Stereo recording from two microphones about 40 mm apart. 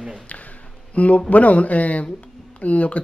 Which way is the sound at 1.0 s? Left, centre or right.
Left.